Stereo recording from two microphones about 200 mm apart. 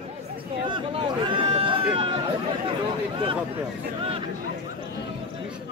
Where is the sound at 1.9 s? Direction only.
25° right (ahead or behind).